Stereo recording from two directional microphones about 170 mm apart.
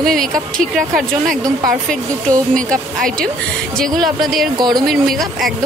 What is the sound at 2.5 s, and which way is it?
Speech, 5° left (ahead or behind).